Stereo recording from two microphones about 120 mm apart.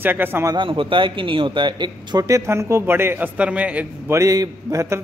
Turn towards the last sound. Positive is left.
turn(degrees=-25)  # may be behind; listen again after turning